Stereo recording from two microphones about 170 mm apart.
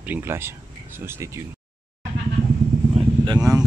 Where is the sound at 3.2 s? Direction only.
20° right (ahead or behind).